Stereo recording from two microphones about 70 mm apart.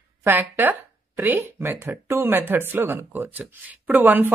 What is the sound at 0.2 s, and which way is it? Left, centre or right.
Speech, right.